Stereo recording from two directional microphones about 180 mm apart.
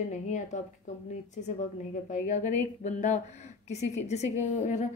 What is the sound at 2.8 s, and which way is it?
A woman's voice, 40° left (ahead or behind).